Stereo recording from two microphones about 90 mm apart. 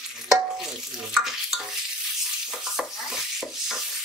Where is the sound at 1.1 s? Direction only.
5° right (ahead or behind).